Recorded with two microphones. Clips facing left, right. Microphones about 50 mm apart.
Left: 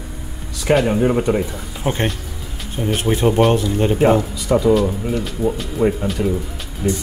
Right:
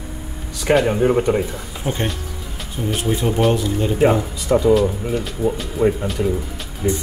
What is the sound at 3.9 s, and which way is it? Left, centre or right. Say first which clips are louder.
Speech: left 1 dB; centre.